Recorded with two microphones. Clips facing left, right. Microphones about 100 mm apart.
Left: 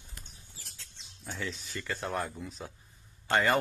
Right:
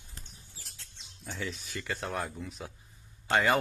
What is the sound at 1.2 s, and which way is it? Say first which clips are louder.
Speech: even; centre (ahead or behind).